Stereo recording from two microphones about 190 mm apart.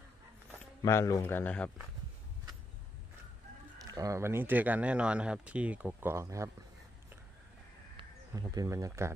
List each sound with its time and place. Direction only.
0.8 s speech: 15° left (ahead or behind)
3.9 s speech: 15° right (ahead or behind)
8.0 s speech: 20° right (ahead or behind)